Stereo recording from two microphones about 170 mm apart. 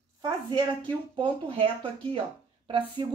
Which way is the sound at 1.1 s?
30° right (ahead or behind).